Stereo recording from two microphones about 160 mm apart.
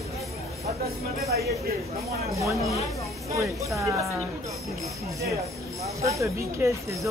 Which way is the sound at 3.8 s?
20° right (ahead or behind).